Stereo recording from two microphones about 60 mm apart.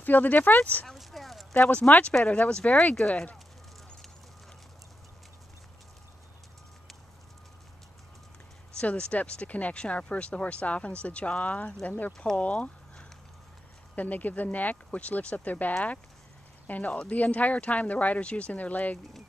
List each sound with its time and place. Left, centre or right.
0.0 s speech: left
0.8 s a sound: centre
1.5 s speech: left
8.7 s speech: centre
13.9 s speech: left